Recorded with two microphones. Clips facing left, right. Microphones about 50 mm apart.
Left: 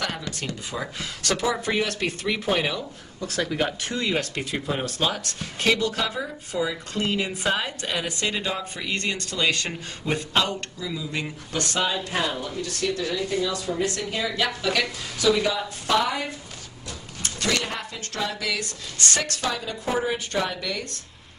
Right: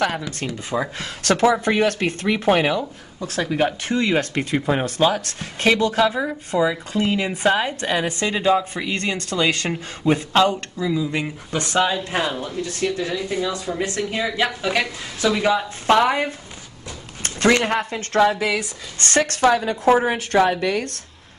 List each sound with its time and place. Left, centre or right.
0.7 s a woman's voice: right
3.2 s speech: centre
4.2 s a woman's voice: right
5.0 s speech: centre
5.6 s speech: right
5.9 s speech: centre
7.2 s a woman's voice: right
8.5 s speech: centre
9.3 s speech: right
11.6 s speech: centre; by 16.3 s right
17.2 s a sound: right
17.6 s a woman's voice: right
19.8 s a woman's voice: right
20.3 s a woman's voice: right